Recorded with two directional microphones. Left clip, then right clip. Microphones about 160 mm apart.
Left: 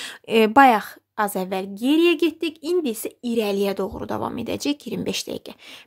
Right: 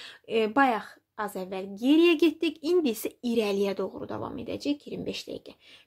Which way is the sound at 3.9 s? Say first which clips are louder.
Left 8 dB; 40° left (ahead or behind).